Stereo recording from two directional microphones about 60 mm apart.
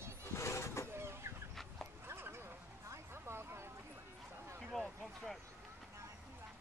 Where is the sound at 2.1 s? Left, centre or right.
Right.